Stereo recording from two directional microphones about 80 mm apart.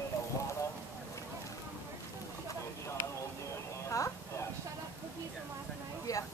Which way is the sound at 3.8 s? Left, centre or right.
Left.